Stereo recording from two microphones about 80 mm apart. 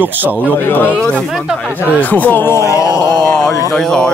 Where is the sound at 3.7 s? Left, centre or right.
Centre.